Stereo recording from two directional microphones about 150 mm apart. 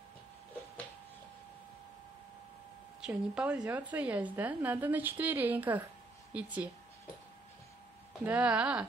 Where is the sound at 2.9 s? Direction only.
5° right (ahead or behind).